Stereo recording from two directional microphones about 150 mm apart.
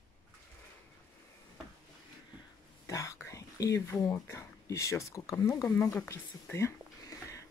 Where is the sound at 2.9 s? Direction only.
20° left (ahead or behind).